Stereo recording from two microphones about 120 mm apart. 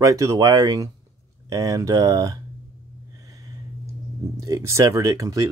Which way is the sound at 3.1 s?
30° right (ahead or behind).